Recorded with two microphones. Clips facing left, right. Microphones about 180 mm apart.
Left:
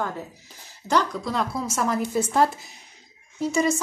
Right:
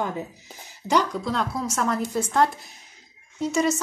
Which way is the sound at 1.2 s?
5° left (ahead or behind).